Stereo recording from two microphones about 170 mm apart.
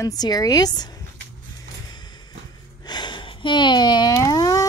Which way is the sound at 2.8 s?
25° left (ahead or behind).